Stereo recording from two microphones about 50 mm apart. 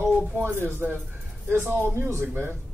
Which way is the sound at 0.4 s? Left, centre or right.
Right.